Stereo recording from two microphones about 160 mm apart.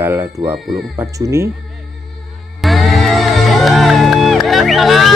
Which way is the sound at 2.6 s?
Centre (ahead or behind).